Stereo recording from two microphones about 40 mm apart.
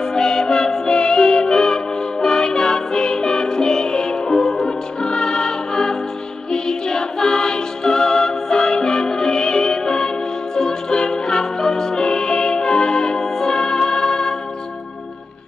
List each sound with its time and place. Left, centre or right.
0.0 s music: centre